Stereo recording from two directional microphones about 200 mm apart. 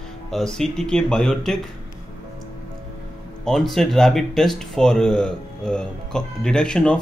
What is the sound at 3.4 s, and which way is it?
Speech, centre (ahead or behind).